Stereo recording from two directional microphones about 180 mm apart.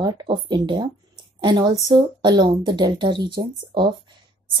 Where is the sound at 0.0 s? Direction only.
25° right (ahead or behind).